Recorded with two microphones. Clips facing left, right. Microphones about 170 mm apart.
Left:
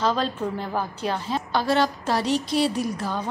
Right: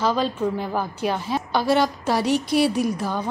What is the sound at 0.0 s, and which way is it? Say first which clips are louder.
A woman's voice: right 2 dB; 5° right (ahead or behind).